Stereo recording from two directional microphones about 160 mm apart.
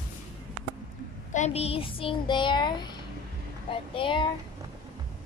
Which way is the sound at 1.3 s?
45° left (ahead or behind).